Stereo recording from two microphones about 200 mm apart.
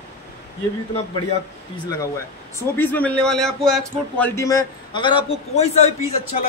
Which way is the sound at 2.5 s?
10° left (ahead or behind).